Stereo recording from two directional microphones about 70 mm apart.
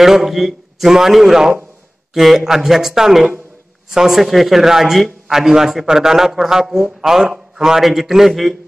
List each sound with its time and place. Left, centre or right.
0.0 s a man's voice: centre